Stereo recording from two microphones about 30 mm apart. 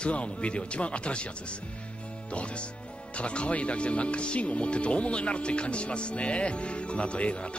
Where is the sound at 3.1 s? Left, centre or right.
Left.